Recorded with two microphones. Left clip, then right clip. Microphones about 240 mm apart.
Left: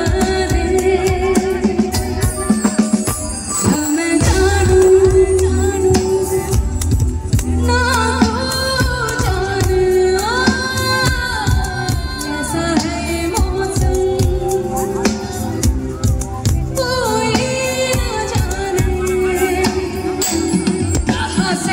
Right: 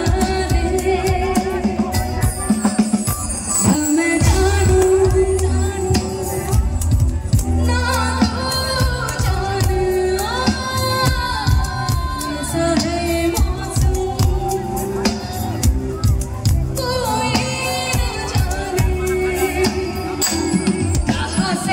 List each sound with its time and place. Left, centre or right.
0.0 s music: centre
7.6 s music: centre
12.5 s music: centre
16.7 s music: centre